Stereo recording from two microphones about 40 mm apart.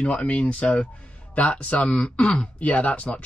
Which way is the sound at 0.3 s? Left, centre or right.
Left.